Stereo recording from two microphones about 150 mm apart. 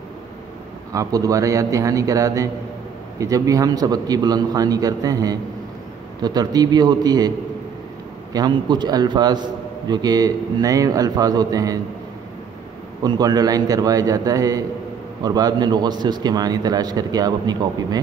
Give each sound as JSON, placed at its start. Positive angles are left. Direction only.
{"t": 0.9, "sound": "a man's voice", "side_deg": -20}
{"t": 13.0, "sound": "a man's voice", "side_deg": -25}